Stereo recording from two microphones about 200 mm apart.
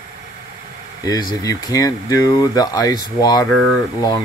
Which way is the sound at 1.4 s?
15° left (ahead or behind).